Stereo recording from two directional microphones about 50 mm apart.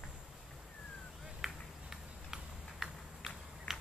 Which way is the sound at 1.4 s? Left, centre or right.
Centre.